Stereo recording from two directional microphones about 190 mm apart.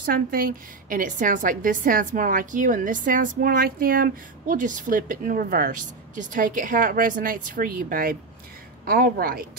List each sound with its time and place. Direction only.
0.0 s a woman's voice: 50° right (ahead or behind)